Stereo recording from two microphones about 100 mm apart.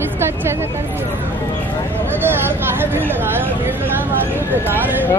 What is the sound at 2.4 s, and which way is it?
Speech, 20° right (ahead or behind).